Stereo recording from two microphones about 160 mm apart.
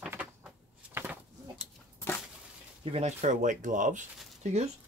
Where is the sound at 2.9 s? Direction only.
45° right (ahead or behind).